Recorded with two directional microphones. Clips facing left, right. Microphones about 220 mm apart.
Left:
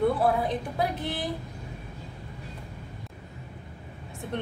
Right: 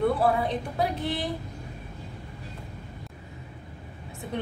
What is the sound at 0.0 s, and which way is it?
A woman's voice, centre (ahead or behind).